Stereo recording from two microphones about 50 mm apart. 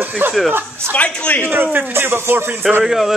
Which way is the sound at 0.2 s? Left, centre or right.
Right.